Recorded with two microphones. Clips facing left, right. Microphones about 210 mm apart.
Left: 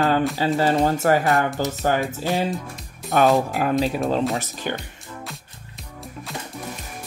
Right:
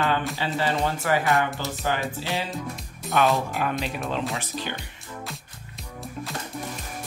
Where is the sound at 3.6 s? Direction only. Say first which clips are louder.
Left 7 dB; 40° left (ahead or behind).